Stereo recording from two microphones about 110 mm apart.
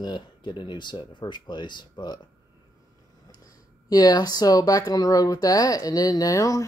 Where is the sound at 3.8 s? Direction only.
35° left (ahead or behind).